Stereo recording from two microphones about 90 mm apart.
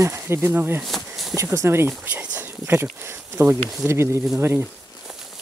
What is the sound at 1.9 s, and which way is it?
Speech, 15° right (ahead or behind).